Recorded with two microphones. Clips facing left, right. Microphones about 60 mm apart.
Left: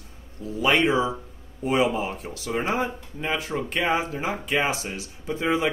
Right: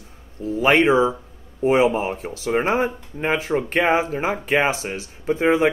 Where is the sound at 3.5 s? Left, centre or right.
Right.